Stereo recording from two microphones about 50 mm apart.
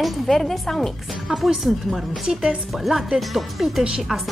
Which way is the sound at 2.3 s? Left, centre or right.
Centre.